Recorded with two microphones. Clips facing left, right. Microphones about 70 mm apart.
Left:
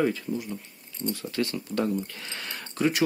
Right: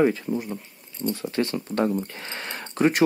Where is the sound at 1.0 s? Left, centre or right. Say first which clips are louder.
Right 4 dB; right.